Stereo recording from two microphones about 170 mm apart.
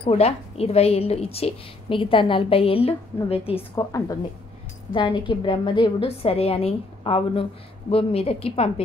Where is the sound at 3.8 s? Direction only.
20° left (ahead or behind).